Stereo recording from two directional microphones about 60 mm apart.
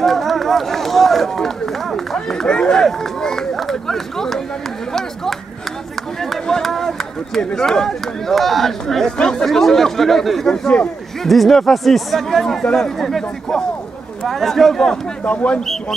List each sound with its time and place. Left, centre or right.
0.0 s speech: centre
2.1 s run: centre
6.3 s speech: centre
15.2 s speech: left